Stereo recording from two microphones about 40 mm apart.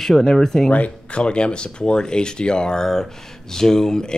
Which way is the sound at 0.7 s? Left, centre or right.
Left.